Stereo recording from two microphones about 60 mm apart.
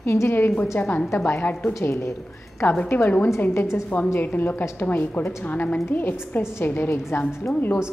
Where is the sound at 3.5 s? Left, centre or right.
Left.